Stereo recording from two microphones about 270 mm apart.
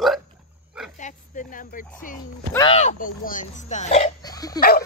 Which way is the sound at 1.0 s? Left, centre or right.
Left.